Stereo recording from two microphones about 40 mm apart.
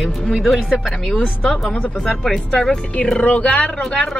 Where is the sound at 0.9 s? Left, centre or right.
Centre.